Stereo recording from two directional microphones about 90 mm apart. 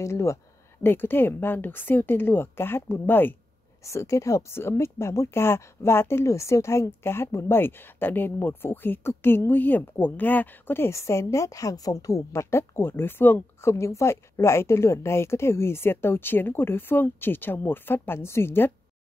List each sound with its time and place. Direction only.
0.0 s speech: 35° left (ahead or behind)
3.8 s speech: 35° left (ahead or behind)